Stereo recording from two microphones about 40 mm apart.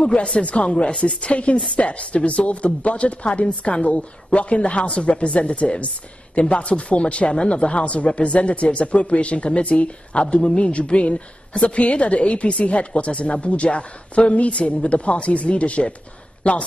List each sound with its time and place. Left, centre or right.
0.0 s a woman's voice: left